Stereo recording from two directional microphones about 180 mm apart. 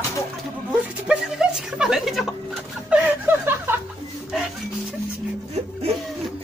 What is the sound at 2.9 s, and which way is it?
Chuckle, 10° right (ahead or behind).